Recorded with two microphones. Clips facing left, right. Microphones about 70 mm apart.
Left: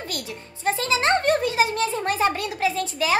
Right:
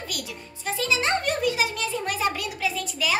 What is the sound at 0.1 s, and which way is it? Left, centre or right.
A child's voice, left.